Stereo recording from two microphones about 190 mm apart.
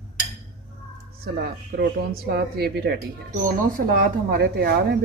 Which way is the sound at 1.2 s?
55° right (ahead or behind).